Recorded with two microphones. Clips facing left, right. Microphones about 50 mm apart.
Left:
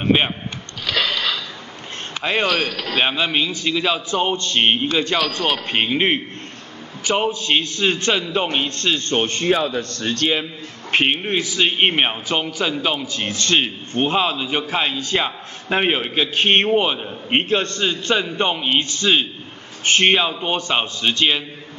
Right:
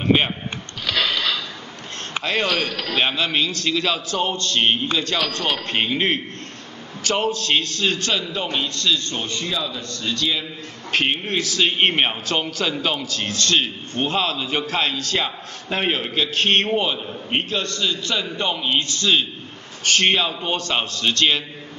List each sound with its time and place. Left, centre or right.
0.0 s speech: centre
2.2 s speech: right
2.9 s a man's voice: centre; by 10.4 s left
10.9 s a man's voice: left